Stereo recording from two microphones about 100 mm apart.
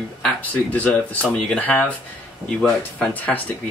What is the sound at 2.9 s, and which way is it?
Speech, 15° left (ahead or behind).